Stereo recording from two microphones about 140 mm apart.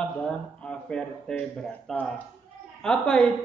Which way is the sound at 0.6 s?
5° left (ahead or behind).